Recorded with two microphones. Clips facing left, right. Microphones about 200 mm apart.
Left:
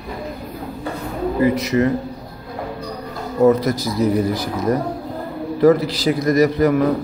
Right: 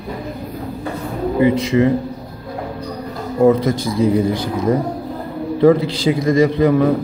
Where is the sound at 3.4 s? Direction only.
25° right (ahead or behind).